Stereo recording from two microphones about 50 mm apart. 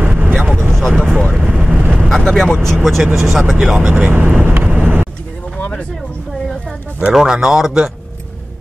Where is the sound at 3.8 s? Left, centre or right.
Right.